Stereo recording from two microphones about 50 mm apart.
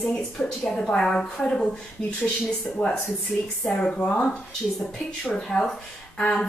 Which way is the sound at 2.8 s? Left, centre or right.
Left.